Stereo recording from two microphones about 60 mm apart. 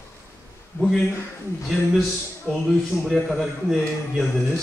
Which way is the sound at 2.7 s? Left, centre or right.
Centre.